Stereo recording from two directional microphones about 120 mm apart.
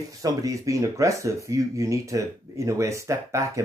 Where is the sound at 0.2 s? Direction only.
30° right (ahead or behind).